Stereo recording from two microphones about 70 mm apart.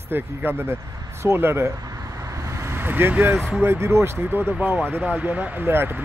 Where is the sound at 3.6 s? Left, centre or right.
Right.